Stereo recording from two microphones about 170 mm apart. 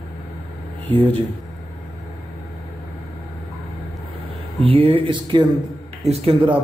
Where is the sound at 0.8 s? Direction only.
10° left (ahead or behind).